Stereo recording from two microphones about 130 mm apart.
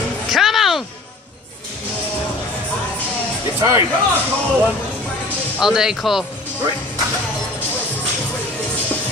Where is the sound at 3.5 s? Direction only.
20° right (ahead or behind).